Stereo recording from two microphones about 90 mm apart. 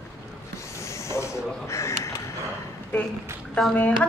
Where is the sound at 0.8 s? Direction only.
30° left (ahead or behind).